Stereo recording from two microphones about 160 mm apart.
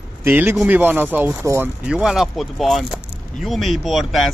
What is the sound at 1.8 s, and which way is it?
Speech, 5° right (ahead or behind).